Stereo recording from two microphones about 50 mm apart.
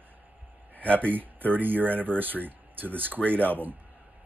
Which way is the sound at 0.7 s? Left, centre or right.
Left.